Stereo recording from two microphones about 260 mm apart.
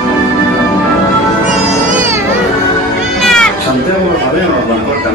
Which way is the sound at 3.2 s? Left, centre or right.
Centre.